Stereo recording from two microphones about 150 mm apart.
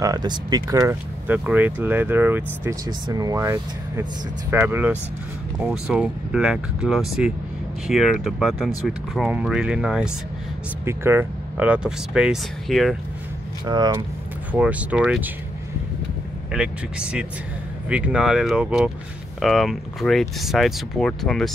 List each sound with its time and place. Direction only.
0.0 s speech: 25° right (ahead or behind); by 10.1 s 5° right (ahead or behind)
10.9 s speech: 15° right (ahead or behind); by 12.9 s centre (ahead or behind)
13.7 s speech: 30° right (ahead or behind)
14.5 s speech: 10° right (ahead or behind)
16.5 s speech: 5° right (ahead or behind)